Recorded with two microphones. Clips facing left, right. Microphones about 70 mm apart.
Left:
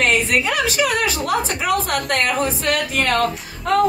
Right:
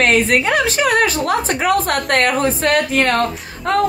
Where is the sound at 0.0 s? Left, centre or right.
Right.